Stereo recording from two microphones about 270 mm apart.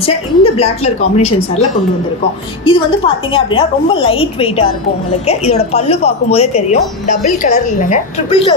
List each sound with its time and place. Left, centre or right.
0.0 s speech: left
2.6 s speech: centre